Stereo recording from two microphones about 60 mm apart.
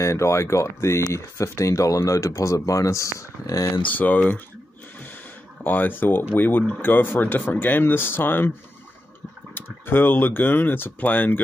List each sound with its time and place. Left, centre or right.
0.0 s speech: left
3.8 s speech: left
5.6 s speech: left